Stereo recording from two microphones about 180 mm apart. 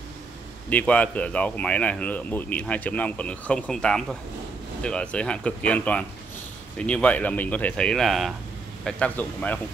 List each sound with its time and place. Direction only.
0.7 s speech: 10° left (ahead or behind)